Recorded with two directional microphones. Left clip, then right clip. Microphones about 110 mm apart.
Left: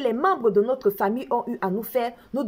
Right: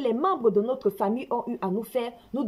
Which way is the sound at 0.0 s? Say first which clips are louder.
Left 2 dB; 10° right (ahead or behind).